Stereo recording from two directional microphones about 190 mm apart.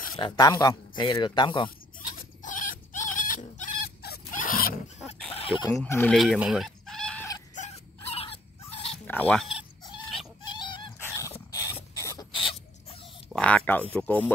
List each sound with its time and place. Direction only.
0.2 s speech: 20° left (ahead or behind)
2.0 s dog: 45° left (ahead or behind)
5.3 s chicken: 30° left (ahead or behind)
5.9 s speech: 10° left (ahead or behind)
6.1 s chicken: centre (ahead or behind)
7.5 s dog: 35° left (ahead or behind)
9.0 s speech: 10° left (ahead or behind)
10.4 s dog: 25° left (ahead or behind)
11.5 s rodents: 20° left (ahead or behind)
13.3 s speech: 5° left (ahead or behind)